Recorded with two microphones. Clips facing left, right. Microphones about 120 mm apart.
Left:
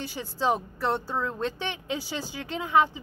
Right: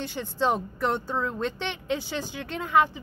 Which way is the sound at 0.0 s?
10° left (ahead or behind).